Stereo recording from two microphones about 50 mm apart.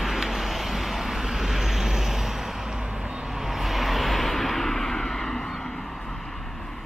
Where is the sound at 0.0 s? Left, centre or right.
Centre.